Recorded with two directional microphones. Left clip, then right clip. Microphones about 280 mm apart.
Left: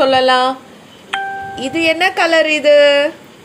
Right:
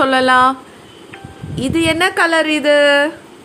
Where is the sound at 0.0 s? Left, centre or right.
Right.